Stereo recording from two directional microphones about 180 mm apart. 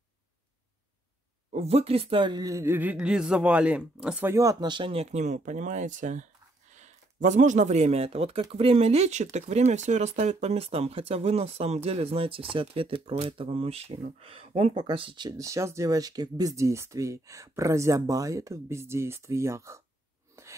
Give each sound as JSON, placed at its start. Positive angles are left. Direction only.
{"t": 1.5, "sound": "speech", "side_deg": -35}